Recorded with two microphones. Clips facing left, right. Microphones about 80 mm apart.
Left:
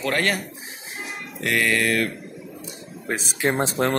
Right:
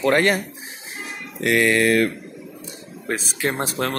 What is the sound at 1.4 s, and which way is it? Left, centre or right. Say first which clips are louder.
Speech: right 4 dB; right.